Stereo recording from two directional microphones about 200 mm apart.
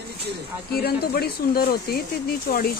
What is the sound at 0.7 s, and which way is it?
Speech, 50° left (ahead or behind).